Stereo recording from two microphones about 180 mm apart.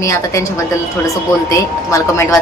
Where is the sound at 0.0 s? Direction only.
15° left (ahead or behind).